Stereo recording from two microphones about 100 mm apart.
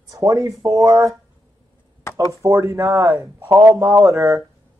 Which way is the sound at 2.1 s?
30° left (ahead or behind).